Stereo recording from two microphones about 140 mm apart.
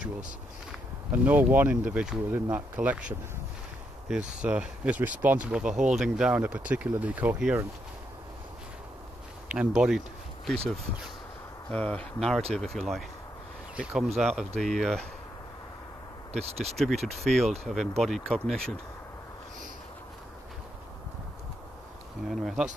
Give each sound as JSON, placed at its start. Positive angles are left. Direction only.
{"t": 0.7, "sound": "speech", "side_deg": -10}
{"t": 9.8, "sound": "speech", "side_deg": -5}
{"t": 11.7, "sound": "speech", "side_deg": 10}
{"t": 16.3, "sound": "speech", "side_deg": -50}
{"t": 16.8, "sound": "speech", "side_deg": 0}
{"t": 22.3, "sound": "speech", "side_deg": 0}